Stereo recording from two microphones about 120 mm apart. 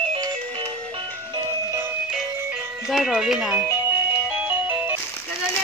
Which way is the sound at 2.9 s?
Centre (ahead or behind).